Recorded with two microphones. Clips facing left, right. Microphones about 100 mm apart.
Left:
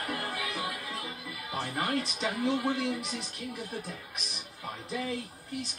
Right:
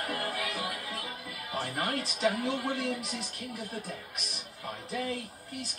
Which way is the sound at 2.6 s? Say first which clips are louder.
Left 2 dB; 20° left (ahead or behind).